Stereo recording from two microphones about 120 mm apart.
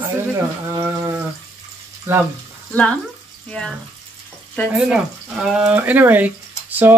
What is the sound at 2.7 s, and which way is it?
Speech, 10° left (ahead or behind).